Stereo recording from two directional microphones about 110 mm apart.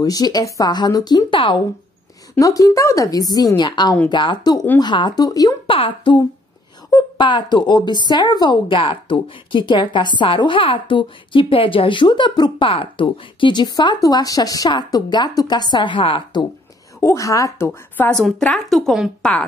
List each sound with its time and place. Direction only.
0.0 s speech: 35° left (ahead or behind)
2.3 s speech: 30° left (ahead or behind)
5.7 s speech: 50° left (ahead or behind)
17.0 s a woman's voice: 30° left (ahead or behind)
17.6 s a woman's voice: 15° left (ahead or behind)
18.1 s a woman's voice: 5° left (ahead or behind)